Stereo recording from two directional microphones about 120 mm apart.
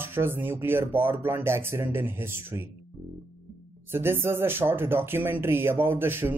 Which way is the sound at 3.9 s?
20° right (ahead or behind).